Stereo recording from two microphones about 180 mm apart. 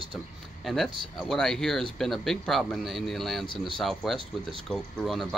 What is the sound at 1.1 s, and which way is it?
Speech, centre (ahead or behind).